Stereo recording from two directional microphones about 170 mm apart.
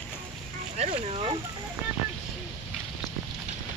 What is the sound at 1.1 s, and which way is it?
Speech, 35° right (ahead or behind).